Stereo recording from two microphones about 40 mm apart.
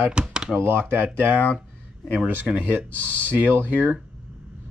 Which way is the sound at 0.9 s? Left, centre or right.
Right.